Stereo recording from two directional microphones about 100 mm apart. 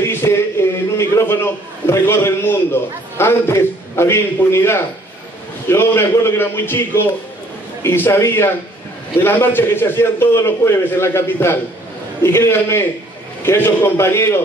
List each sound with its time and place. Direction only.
0.0 s a man's voice: 25° left (ahead or behind)